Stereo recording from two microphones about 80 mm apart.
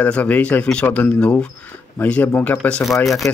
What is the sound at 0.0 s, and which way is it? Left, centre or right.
A man's voice, centre.